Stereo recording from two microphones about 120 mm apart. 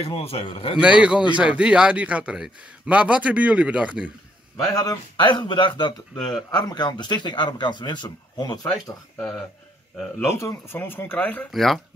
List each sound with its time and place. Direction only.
0.0 s a man's voice: 55° left (ahead or behind)
0.7 s a man's voice: 10° right (ahead or behind)
4.7 s a man's voice: 35° left (ahead or behind)
6.1 s speech: 5° left (ahead or behind)
6.5 s a man's voice: 35° left (ahead or behind)
10.3 s speech: 20° left (ahead or behind)
11.5 s speech: centre (ahead or behind)